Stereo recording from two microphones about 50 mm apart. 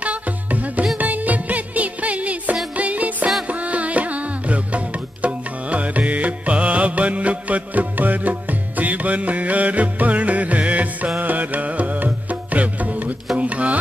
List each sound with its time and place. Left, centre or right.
0.0 s music: right